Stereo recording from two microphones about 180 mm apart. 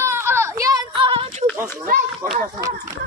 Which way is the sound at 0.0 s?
15° right (ahead or behind).